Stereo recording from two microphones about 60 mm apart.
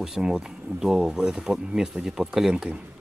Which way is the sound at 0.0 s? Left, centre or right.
Centre.